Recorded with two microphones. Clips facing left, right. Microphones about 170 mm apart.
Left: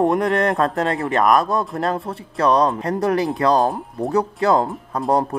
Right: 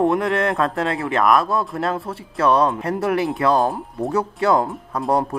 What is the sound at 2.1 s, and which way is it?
Speech, 25° left (ahead or behind).